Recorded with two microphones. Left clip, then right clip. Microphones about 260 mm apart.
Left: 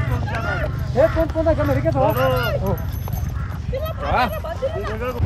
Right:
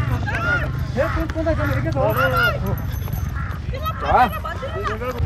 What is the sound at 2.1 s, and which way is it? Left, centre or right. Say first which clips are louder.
Speech: right 2 dB; left.